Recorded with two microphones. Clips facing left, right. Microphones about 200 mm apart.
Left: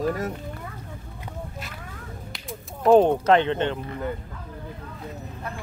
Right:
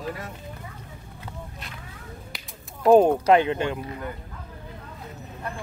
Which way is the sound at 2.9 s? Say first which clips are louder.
Even; 10° right (ahead or behind).